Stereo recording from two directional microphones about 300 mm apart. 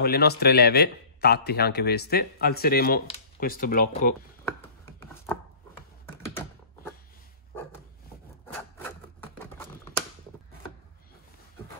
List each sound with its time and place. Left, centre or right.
0.0 s a man's voice: left
5.0 s chopping: centre
6.0 s typing: centre
8.5 s rub: centre